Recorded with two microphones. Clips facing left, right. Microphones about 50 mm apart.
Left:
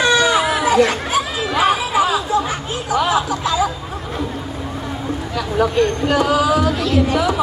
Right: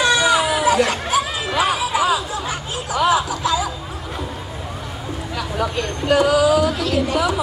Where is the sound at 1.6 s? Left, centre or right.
Left.